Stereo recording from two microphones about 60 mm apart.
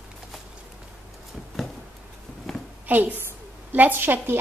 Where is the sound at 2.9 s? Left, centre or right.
Right.